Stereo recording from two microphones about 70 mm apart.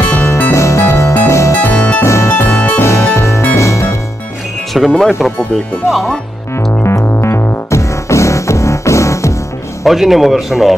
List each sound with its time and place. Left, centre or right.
0.2 s music: left
1.6 s music: left
2.0 s music: left
4.7 s speech: centre
6.7 s music: left
9.8 s speech: centre